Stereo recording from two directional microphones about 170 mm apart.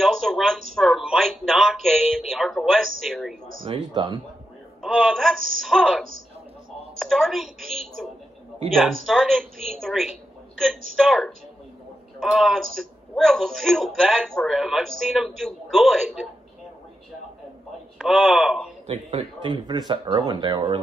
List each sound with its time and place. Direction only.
0.0 s a sound: centre (ahead or behind)
3.6 s speech: 30° right (ahead or behind)
4.8 s a man's voice: centre (ahead or behind)
17.9 s a man's voice: centre (ahead or behind)
18.9 s speech: 40° right (ahead or behind)